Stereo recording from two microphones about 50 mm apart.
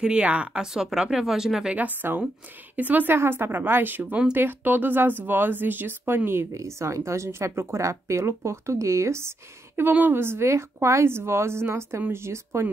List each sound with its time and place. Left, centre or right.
0.0 s speech: right
0.7 s speech: centre
1.8 s a woman's voice: right
3.2 s speech: right
6.5 s speech: right
10.0 s a woman's voice: right